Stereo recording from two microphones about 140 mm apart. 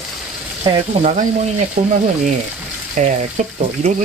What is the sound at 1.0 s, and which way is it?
Speech, 60° right (ahead or behind).